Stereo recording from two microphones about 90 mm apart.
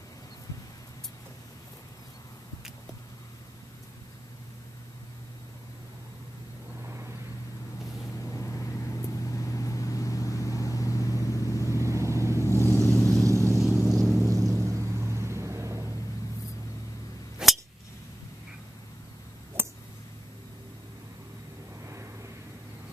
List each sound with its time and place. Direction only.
6.8 s vehicle: 30° right (ahead or behind)
8.3 s vehicle: 30° left (ahead or behind)
11.8 s vehicle: 35° right (ahead or behind)
12.9 s vehicle: 5° left (ahead or behind)
13.3 s vehicle: 35° right (ahead or behind)
13.6 s vehicle: 5° right (ahead or behind)
14.2 s vehicle: 35° right (ahead or behind)
17.4 s a sound: 5° right (ahead or behind)
19.6 s a sound: 25° right (ahead or behind)
21.8 s vehicle: 30° right (ahead or behind)